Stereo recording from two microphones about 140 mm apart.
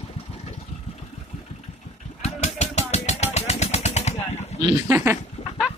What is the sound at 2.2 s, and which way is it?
Vehicle, 50° left (ahead or behind).